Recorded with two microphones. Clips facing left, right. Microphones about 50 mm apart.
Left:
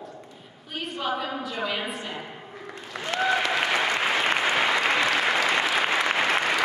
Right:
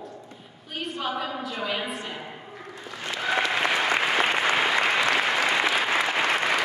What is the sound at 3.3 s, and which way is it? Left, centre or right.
Applause, centre.